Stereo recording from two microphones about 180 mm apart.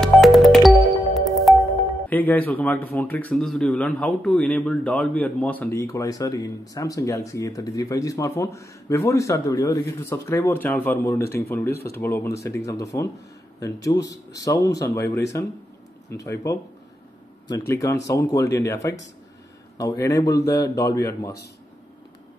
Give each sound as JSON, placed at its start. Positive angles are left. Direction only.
{"t": 0.0, "sound": "music", "side_deg": 0}
{"t": 2.0, "sound": "speech", "side_deg": 10}
{"t": 14.4, "sound": "a man's voice", "side_deg": 20}
{"t": 20.3, "sound": "speech", "side_deg": 65}
{"t": 20.7, "sound": "a man's voice", "side_deg": 20}